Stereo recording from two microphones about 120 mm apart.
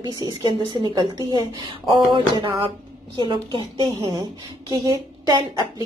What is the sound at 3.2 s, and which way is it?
A woman's voice, 40° right (ahead or behind).